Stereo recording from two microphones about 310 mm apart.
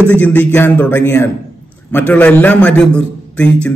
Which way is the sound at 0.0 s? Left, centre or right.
Centre.